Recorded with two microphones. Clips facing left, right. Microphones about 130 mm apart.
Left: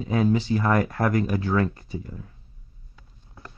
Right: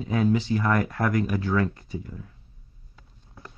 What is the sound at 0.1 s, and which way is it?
Speech, 30° left (ahead or behind).